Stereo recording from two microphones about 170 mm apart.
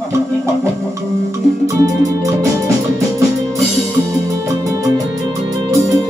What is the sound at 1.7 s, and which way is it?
Music, 15° right (ahead or behind).